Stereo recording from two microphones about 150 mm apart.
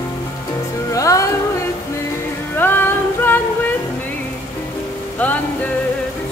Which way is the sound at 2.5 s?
15° left (ahead or behind).